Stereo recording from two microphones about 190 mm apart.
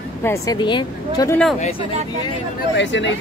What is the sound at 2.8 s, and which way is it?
Speech, 75° left (ahead or behind).